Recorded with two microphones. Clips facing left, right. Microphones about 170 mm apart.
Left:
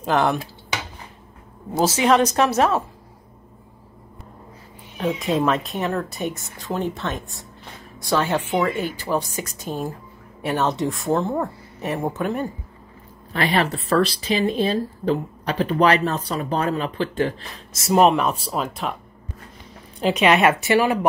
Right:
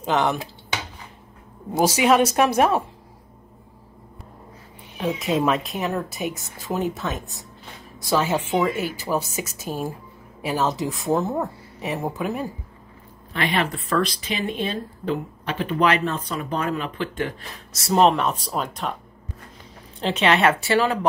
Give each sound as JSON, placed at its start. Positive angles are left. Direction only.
{"t": 1.8, "sound": "speech", "side_deg": -10}
{"t": 5.0, "sound": "speech", "side_deg": 0}
{"t": 13.3, "sound": "speech", "side_deg": 35}
{"t": 17.9, "sound": "speech", "side_deg": 10}
{"t": 20.0, "sound": "speech", "side_deg": 10}